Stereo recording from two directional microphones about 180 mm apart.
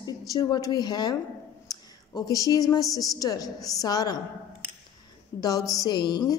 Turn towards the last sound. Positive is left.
turn(degrees=25)  # may be behind; listen again after turning